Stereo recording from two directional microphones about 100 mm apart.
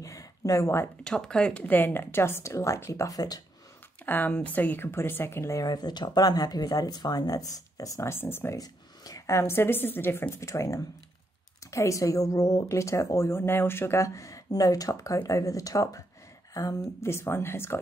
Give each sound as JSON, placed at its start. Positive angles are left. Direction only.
{"t": 0.0, "sound": "a sound", "side_deg": 35}
{"t": 1.0, "sound": "a woman's voice", "side_deg": 5}
{"t": 4.0, "sound": "speech", "side_deg": 20}
{"t": 8.5, "sound": "a woman's voice", "side_deg": 35}